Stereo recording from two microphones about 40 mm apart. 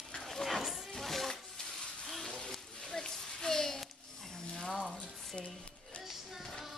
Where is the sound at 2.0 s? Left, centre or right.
Centre.